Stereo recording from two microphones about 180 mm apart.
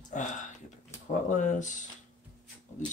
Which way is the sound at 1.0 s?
40° left (ahead or behind).